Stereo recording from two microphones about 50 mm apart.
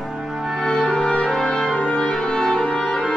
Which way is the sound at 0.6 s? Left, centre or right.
Centre.